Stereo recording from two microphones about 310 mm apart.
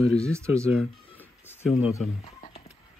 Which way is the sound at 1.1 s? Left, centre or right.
Centre.